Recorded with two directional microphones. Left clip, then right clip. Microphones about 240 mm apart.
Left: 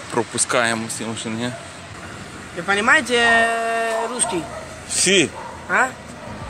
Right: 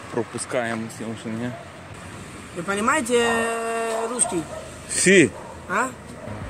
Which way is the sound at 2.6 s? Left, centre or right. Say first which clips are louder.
Left 6 dB; right.